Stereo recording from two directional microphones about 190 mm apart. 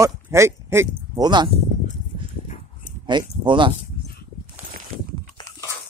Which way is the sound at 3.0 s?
25° right (ahead or behind).